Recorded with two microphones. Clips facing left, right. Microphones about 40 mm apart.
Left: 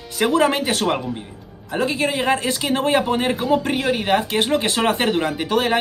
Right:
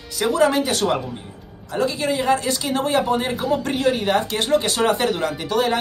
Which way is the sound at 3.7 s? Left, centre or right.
Centre.